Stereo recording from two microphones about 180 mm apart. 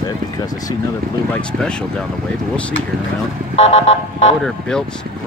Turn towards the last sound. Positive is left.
turn(degrees=35)  # may be behind; listen again after turning